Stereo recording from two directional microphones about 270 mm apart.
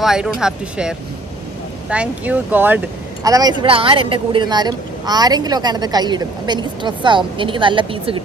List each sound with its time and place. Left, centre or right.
0.0 s a woman's voice: centre